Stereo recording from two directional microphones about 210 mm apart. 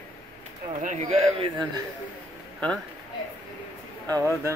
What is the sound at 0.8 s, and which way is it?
Speech, 30° right (ahead or behind).